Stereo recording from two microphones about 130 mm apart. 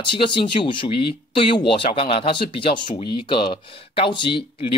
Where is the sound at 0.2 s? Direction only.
40° left (ahead or behind).